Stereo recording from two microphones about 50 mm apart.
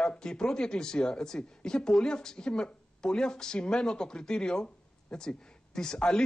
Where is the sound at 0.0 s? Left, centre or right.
Centre.